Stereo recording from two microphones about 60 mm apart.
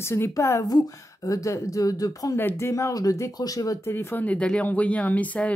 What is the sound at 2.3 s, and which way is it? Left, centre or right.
Speech, left.